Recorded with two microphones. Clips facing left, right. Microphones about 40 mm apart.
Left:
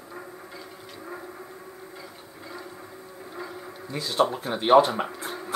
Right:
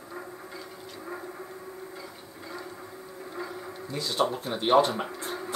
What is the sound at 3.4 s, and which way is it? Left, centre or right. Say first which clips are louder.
Speech: right 1 dB; centre.